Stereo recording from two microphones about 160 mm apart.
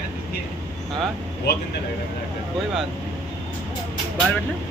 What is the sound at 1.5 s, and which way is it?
Speech, 90° left.